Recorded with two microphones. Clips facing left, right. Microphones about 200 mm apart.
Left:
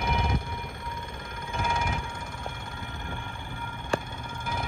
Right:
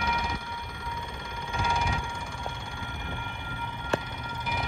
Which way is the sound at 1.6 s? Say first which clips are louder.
Even; 50° left (ahead or behind).